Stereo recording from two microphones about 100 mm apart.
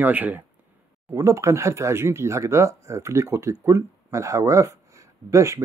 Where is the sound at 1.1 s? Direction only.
30° right (ahead or behind).